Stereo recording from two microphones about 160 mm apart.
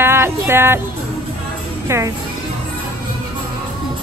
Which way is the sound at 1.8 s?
15° right (ahead or behind).